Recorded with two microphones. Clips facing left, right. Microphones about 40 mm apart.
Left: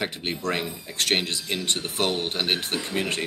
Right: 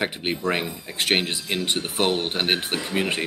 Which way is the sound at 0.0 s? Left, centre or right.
Centre.